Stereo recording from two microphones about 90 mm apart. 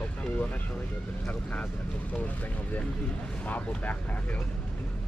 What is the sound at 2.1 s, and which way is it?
Speech, 20° left (ahead or behind).